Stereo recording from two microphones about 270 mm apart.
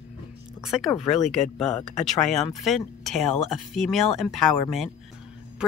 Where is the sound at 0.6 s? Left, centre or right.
Centre.